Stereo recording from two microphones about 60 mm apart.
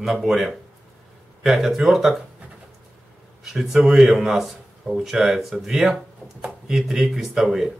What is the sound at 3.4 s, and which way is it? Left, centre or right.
Speech, centre.